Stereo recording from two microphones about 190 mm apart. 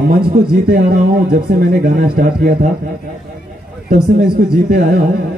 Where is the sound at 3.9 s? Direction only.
50° right (ahead or behind).